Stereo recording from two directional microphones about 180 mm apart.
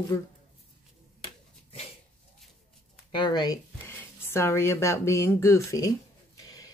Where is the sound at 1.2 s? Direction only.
30° left (ahead or behind).